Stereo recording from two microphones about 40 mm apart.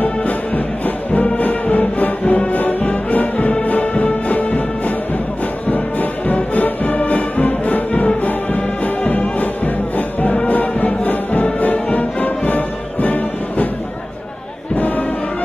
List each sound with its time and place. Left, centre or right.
1.4 s music: left
9.9 s music: left
14.8 s music: left